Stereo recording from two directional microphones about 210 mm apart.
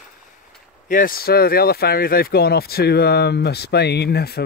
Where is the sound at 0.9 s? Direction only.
40° left (ahead or behind).